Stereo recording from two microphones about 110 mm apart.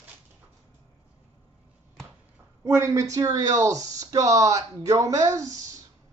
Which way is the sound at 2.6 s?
25° right (ahead or behind).